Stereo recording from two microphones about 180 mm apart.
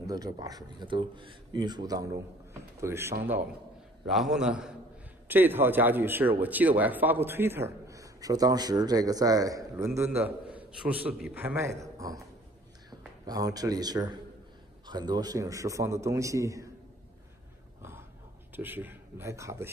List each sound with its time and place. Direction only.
0.0 s speech: 20° right (ahead or behind)
4.1 s a man's voice: centre (ahead or behind); by 12.2 s 20° right (ahead or behind)
13.2 s a man's voice: 20° right (ahead or behind)
18.6 s a man's voice: 10° right (ahead or behind)